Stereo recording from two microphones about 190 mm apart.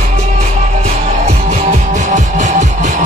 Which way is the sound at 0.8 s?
35° right (ahead or behind).